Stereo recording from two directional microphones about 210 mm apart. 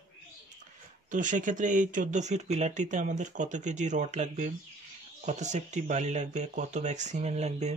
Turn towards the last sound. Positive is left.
turn(degrees=-30)  # may be behind; listen again after turning